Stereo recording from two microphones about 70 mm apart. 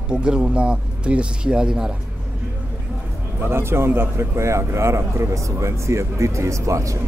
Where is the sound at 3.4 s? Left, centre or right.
Right.